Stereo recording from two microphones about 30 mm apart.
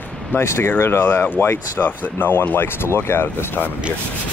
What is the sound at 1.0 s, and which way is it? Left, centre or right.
Speech, left.